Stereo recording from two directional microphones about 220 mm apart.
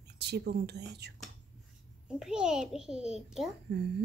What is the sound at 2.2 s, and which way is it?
A child's voice, 5° right (ahead or behind).